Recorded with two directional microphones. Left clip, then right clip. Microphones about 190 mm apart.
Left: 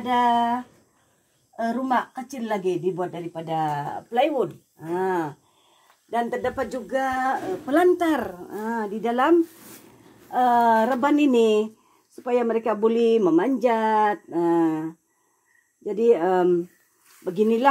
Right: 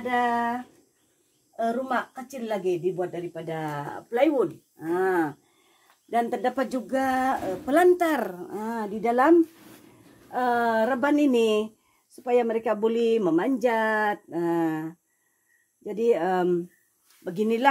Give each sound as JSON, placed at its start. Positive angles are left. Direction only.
{"t": 0.0, "sound": "a woman's voice", "side_deg": 0}
{"t": 1.6, "sound": "a woman's voice", "side_deg": 0}
{"t": 4.2, "sound": "speech", "side_deg": -25}
{"t": 6.0, "sound": "speech", "side_deg": -45}
{"t": 10.3, "sound": "a woman's voice", "side_deg": -10}